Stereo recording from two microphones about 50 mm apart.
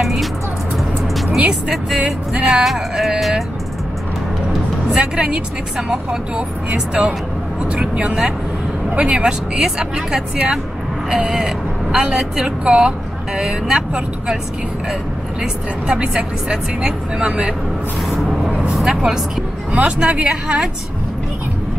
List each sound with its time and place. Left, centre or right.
0.0 s music: centre
1.5 s a woman's voice: centre
2.3 s speech: right
2.6 s speech: centre
5.1 s speech: centre
9.6 s a woman's voice: centre
15.9 s a woman's voice: centre
18.1 s vehicle: centre
18.7 s a woman's voice: centre